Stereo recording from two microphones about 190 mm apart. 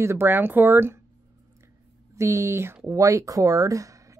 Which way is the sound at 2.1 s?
15° right (ahead or behind).